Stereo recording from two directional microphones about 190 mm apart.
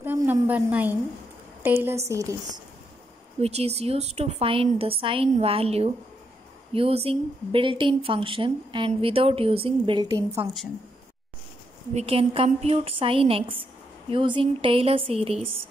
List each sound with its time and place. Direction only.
0.0 s a woman's voice: 10° right (ahead or behind)
3.3 s a woman's voice: 35° right (ahead or behind)
10.0 s a woman's voice: 15° right (ahead or behind)
11.9 s a woman's voice: 35° right (ahead or behind)